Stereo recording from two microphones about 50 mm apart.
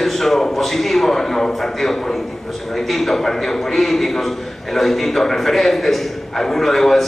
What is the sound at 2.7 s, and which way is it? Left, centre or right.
A man's voice, centre.